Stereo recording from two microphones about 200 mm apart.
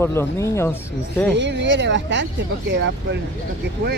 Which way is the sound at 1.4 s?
60° right (ahead or behind).